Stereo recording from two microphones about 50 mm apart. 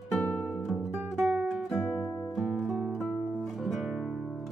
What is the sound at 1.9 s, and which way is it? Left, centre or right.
Music, left.